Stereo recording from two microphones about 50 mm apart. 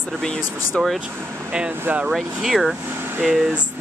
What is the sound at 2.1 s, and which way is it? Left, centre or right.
Speech, centre.